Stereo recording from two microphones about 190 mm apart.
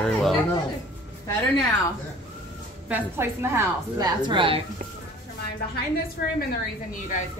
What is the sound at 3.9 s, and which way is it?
Speech, 20° right (ahead or behind).